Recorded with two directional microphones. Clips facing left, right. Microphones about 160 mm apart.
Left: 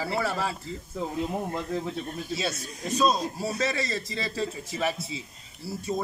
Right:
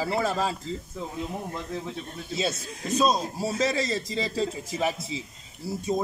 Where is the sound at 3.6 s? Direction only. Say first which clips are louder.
Right 4 dB; 15° right (ahead or behind).